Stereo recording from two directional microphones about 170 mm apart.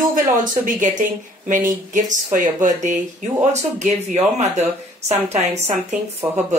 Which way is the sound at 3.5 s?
40° right (ahead or behind).